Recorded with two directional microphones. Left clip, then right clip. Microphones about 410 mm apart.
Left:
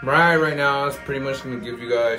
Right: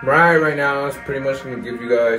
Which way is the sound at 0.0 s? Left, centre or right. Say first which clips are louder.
Right 3 dB; centre.